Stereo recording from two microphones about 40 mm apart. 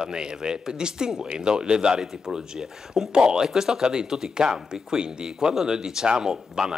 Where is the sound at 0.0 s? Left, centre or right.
Right.